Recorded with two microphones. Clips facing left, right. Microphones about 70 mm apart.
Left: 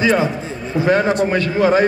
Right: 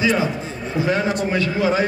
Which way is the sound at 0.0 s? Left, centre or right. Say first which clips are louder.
Left 3 dB; left.